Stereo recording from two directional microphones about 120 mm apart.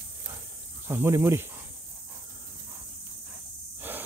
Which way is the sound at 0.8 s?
20° right (ahead or behind).